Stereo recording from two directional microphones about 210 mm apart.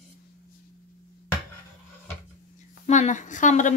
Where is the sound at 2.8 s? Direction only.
35° left (ahead or behind).